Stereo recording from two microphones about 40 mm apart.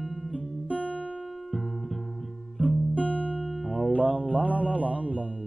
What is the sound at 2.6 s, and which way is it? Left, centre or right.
Guitar, left.